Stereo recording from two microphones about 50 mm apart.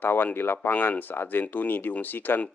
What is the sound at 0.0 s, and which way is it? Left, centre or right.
Speech, left.